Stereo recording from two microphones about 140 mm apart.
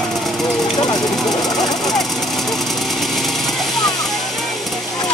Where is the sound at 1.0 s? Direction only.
Centre (ahead or behind).